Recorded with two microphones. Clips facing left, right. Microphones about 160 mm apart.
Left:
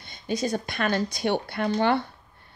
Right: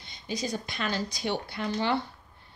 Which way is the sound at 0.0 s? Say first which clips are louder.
Left 6 dB; 55° left (ahead or behind).